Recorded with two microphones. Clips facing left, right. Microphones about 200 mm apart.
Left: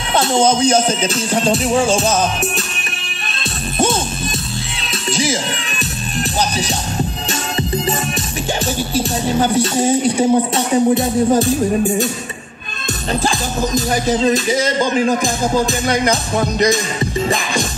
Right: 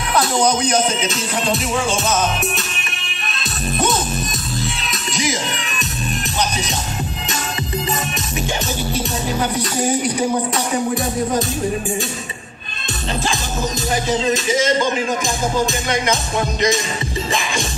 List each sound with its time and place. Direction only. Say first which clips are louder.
0.1 s music: left 3 dB; 25° left (ahead or behind)
3.7 s music: left 3 dB; 30° left (ahead or behind)
5.1 s music: left 3 dB; 30° left (ahead or behind)
8.9 s music: left 6 dB; 30° left (ahead or behind)
13.7 s music: left 4 dB; 35° left (ahead or behind)